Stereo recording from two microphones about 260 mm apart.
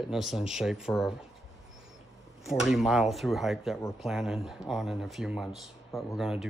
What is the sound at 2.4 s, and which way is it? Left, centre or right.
Speech, centre.